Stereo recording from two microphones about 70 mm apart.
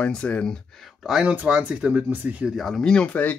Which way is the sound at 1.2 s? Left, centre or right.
Centre.